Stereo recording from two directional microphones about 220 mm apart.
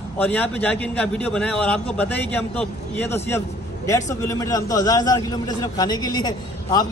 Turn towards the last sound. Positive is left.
turn(degrees=20)  # may be behind; listen again after turning